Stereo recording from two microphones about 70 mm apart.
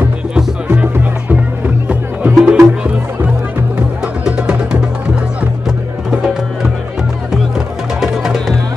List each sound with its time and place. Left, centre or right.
0.7 s music: right
2.3 s music: centre
4.2 s music: centre
7.5 s music: centre